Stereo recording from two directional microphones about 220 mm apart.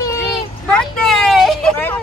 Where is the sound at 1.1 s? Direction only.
Centre (ahead or behind).